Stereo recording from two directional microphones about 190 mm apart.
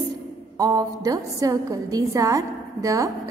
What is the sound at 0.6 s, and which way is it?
A woman's voice, 20° right (ahead or behind).